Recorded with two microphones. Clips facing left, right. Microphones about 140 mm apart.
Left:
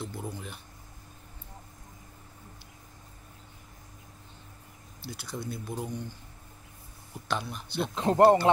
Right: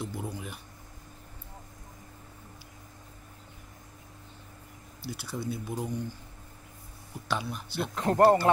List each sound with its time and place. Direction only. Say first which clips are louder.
0.0 s speech: right 1 dB; 5° right (ahead or behind)
5.0 s speech: right 3 dB; 5° right (ahead or behind)
7.2 s speech: even; 5° right (ahead or behind)
7.9 s speech: left 1 dB; 20° left (ahead or behind)